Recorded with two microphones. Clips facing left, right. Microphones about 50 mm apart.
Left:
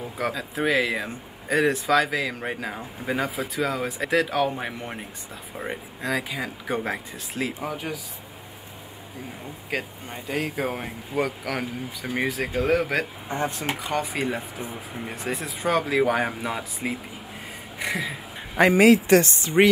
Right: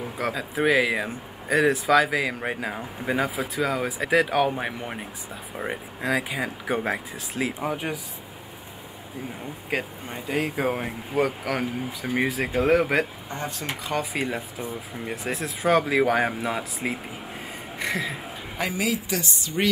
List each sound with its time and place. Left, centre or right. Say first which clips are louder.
0.2 s speech: right 1 dB; centre
7.7 s speech: right 2 dB; centre
9.7 s speech: right 1 dB; centre
13.4 s speech: left 5 dB; left
13.7 s speech: left 1 dB; centre
18.6 s speech: left 11 dB; left